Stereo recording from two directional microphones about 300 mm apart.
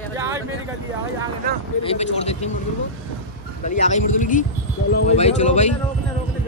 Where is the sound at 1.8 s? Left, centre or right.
Centre.